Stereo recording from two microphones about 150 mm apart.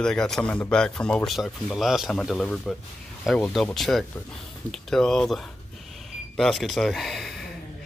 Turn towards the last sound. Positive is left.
turn(degrees=0)  # may be behind; listen again after turning